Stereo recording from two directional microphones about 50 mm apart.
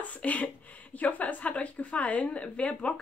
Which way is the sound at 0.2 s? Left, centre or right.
Left.